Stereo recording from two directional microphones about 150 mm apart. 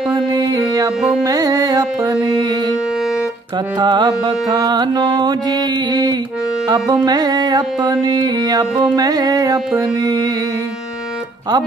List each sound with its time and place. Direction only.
0.1 s music: 25° right (ahead or behind)
1.2 s carnatic music: 25° right (ahead or behind)
3.8 s music: 30° right (ahead or behind)